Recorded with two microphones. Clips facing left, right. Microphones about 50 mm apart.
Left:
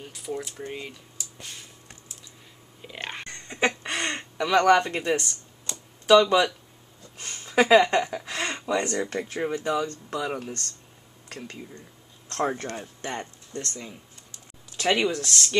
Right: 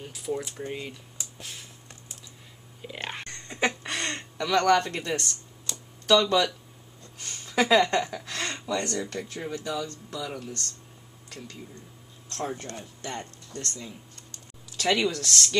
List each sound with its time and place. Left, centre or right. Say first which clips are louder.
0.0 s speech: right 1 dB; centre
1.4 s a sound: even; centre
2.8 s clicking: even; centre
3.3 s a sound: left 2 dB; centre
4.5 s speech: left 3 dB; centre; by 11.6 s left
12.4 s speech: left 6 dB; left
12.6 s speech: left 4 dB; left; by 15.5 s centre